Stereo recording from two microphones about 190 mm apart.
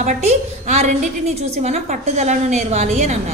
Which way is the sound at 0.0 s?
35° right (ahead or behind).